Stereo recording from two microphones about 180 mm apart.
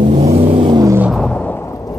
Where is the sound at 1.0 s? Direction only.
Centre (ahead or behind); by 1.9 s 15° left (ahead or behind).